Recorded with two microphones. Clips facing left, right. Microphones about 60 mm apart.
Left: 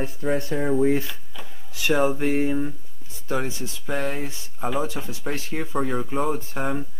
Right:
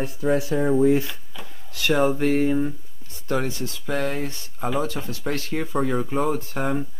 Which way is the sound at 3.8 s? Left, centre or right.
Centre.